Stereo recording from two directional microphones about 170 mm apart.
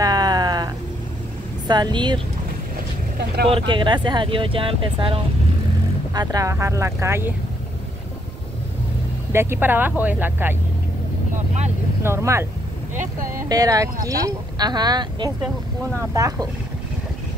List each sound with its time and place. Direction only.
0.0 s a sound: 25° right (ahead or behind)
1.7 s speech: 25° right (ahead or behind)
3.4 s speech: 30° right (ahead or behind)
6.1 s speech: 20° right (ahead or behind)
9.3 s speech: 15° right (ahead or behind)
11.3 s speech: 40° right (ahead or behind)
12.0 s speech: 15° right (ahead or behind)
12.9 s speech: 50° right (ahead or behind)
13.3 s speech: 20° right (ahead or behind)
15.4 s speech: 15° right (ahead or behind)